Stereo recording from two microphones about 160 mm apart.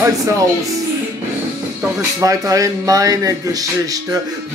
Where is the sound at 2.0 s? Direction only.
20° right (ahead or behind).